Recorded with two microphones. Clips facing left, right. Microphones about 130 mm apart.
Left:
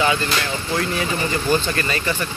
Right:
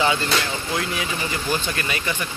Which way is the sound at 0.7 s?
10° right (ahead or behind).